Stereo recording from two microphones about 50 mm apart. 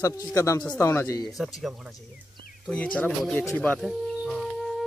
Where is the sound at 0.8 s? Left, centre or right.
Left.